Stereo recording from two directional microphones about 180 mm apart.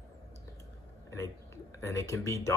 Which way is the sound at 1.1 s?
15° left (ahead or behind).